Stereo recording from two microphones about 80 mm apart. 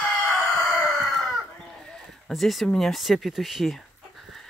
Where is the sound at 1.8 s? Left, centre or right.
Centre.